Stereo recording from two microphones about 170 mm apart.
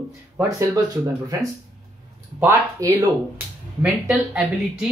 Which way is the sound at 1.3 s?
20° right (ahead or behind).